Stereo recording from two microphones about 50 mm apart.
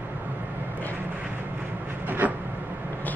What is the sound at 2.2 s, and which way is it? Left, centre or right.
Vehicle, right.